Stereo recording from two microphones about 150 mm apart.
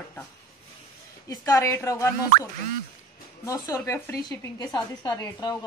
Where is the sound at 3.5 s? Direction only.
20° left (ahead or behind).